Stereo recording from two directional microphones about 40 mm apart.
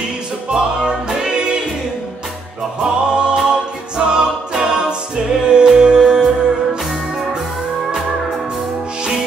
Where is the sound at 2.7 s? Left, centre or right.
Right.